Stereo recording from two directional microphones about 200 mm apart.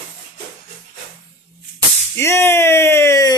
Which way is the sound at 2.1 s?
15° left (ahead or behind).